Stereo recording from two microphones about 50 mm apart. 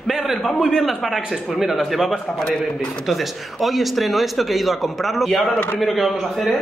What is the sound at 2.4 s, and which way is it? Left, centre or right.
Speech, centre.